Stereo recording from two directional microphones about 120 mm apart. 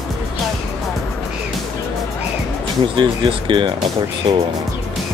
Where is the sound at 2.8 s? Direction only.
45° right (ahead or behind).